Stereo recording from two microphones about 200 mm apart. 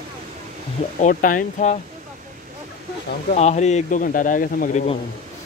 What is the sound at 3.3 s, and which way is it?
Speech, 35° left (ahead or behind).